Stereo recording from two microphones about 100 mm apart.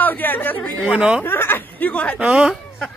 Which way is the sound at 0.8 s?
10° right (ahead or behind).